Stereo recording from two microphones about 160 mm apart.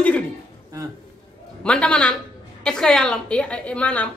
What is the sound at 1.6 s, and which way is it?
A woman's voice, 5° left (ahead or behind).